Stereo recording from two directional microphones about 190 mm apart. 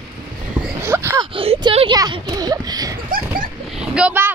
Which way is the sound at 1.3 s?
30° right (ahead or behind).